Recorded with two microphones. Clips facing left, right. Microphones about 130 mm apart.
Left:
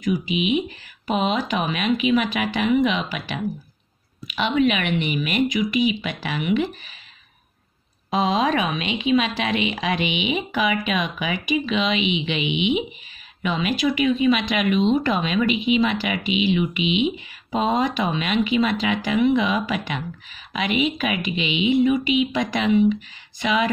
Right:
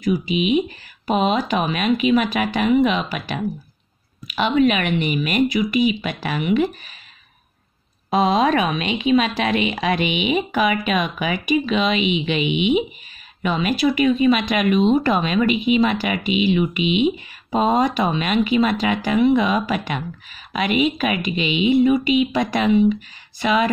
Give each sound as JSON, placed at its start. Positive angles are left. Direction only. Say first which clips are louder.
{"t": 0.0, "sound": "speech", "louder": "right 3 dB", "side_deg": -40}
{"t": 8.1, "sound": "speech", "louder": "right 3 dB", "side_deg": -45}